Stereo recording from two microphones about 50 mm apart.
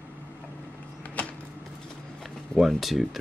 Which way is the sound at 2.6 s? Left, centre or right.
Centre.